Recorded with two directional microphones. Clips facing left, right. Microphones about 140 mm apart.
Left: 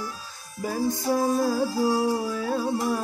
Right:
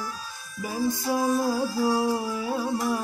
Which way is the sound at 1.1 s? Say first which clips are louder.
Left 1 dB; 15° right (ahead or behind).